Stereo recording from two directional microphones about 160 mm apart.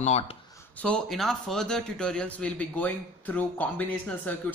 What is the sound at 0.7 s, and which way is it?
A man's voice, 5° left (ahead or behind).